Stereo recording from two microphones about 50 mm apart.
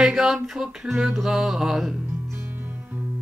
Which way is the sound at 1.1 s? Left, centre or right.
Centre.